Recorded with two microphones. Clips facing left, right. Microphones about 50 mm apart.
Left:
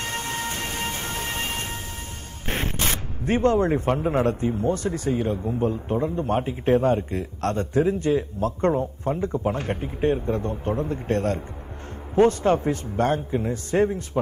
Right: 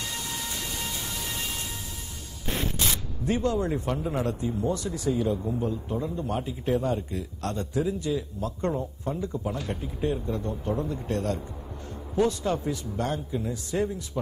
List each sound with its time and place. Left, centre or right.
0.0 s train: left
2.4 s speech: left